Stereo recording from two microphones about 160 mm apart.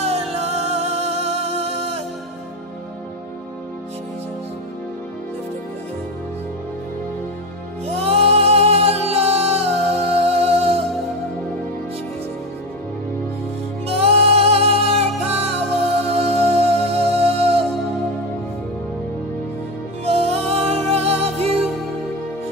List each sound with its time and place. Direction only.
0.0 s music: 40° right (ahead or behind)
7.8 s music: 40° right (ahead or behind)
13.8 s music: 40° right (ahead or behind)
20.1 s music: 40° right (ahead or behind)